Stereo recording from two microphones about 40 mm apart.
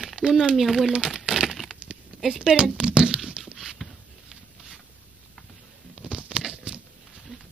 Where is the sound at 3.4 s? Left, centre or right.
Centre.